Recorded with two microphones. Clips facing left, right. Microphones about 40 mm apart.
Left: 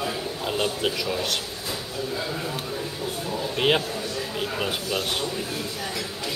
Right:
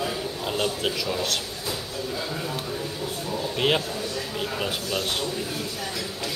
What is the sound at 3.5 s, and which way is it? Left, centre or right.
A man's voice, centre.